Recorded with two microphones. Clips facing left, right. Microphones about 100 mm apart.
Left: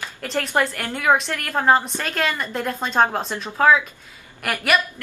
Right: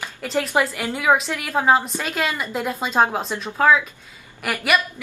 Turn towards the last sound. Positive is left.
turn(degrees=0)  # may be behind; listen again after turning